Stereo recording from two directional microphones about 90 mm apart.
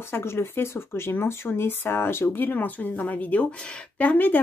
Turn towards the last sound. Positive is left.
turn(degrees=20)  # may be behind; listen again after turning